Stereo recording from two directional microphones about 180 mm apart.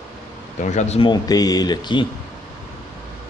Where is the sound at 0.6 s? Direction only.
40° left (ahead or behind); by 2.0 s 25° left (ahead or behind).